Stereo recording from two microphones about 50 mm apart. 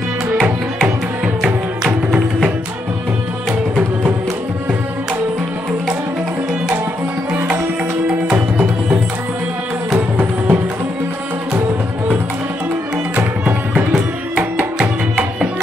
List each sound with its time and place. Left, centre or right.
9.9 s music: right
13.1 s music: right